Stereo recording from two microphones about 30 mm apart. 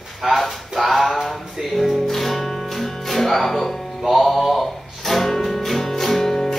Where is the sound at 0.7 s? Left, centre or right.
Centre.